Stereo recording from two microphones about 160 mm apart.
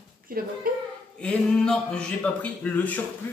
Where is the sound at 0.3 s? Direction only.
65° right (ahead or behind).